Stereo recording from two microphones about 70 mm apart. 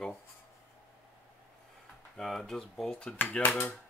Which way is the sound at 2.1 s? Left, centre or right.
Centre.